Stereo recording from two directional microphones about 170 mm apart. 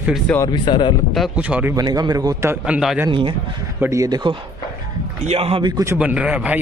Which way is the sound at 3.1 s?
30° right (ahead or behind).